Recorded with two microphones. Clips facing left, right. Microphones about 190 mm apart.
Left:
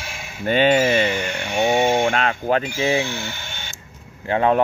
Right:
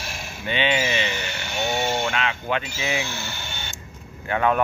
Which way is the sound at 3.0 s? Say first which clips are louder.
Left 4 dB; 10° left (ahead or behind).